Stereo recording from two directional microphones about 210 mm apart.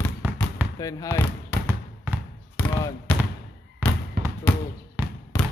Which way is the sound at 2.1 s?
15° right (ahead or behind).